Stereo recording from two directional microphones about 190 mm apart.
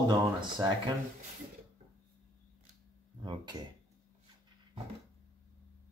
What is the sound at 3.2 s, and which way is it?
Speech, 25° right (ahead or behind).